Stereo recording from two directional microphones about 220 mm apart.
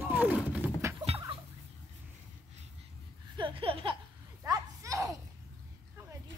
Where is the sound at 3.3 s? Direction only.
25° right (ahead or behind).